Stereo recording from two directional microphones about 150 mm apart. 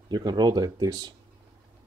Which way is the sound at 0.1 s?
30° right (ahead or behind).